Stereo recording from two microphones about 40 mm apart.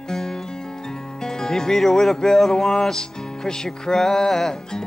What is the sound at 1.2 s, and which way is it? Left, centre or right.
Music, centre.